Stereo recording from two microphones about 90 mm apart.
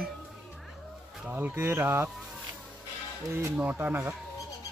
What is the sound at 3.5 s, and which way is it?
Speech, 20° right (ahead or behind).